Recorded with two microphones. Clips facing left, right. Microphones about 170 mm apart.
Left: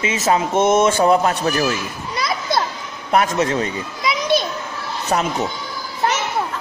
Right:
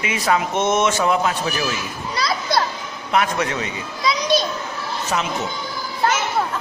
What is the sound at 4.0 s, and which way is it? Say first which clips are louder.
Children playing: right 1 dB; 20° left (ahead or behind).